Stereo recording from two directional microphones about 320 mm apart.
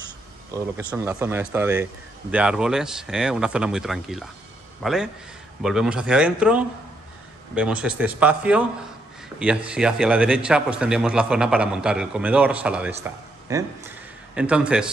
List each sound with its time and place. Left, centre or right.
0.5 s a man's voice: centre